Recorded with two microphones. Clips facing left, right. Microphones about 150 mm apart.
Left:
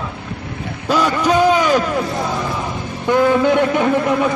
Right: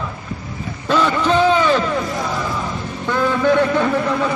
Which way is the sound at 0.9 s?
10° left (ahead or behind).